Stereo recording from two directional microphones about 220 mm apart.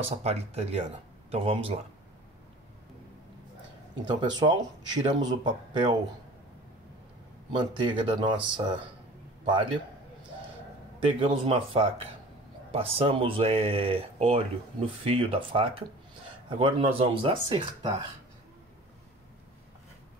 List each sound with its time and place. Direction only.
0.2 s speech: 30° right (ahead or behind)
4.1 s speech: 20° right (ahead or behind)
7.5 s speech: 20° right (ahead or behind)
11.1 s speech: 25° right (ahead or behind)